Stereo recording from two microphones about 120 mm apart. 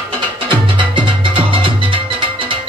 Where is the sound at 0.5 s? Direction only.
40° right (ahead or behind).